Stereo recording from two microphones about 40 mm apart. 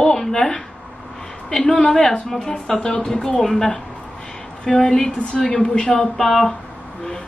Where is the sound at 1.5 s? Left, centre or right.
Centre.